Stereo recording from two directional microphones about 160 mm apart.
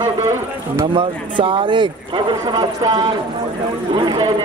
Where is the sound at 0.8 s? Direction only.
30° right (ahead or behind).